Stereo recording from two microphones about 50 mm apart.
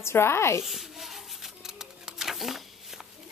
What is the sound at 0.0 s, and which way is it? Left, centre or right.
Speech, left.